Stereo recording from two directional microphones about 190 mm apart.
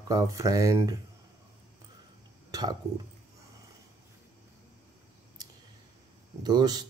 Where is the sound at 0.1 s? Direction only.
20° right (ahead or behind).